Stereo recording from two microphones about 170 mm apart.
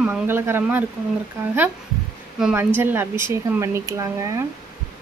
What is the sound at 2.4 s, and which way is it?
Speech, 10° right (ahead or behind).